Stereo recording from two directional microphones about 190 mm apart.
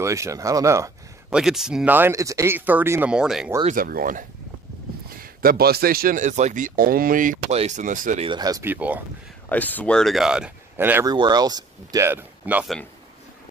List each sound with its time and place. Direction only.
0.0 s speech: 15° right (ahead or behind)
1.3 s speech: centre (ahead or behind)
3.6 s speech: 50° right (ahead or behind)
8.3 s speech: 20° right (ahead or behind)
9.5 s speech: 10° left (ahead or behind); by 12.7 s 10° right (ahead or behind)